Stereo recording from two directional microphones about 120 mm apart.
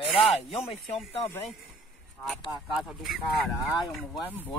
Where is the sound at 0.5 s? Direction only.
55° left (ahead or behind).